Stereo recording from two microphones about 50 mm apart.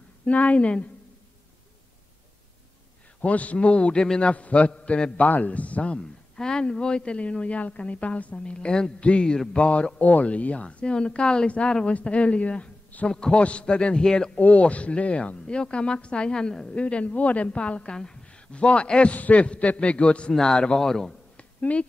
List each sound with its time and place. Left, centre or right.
0.2 s a woman's voice: left
3.2 s a woman's voice: left
4.3 s a woman's voice: left
14.4 s a woman's voice: left
16.8 s a woman's voice: left; by 21.1 s centre
21.4 s a sound: left